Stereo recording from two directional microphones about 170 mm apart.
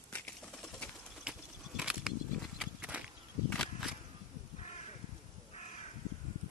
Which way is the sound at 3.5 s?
Centre (ahead or behind).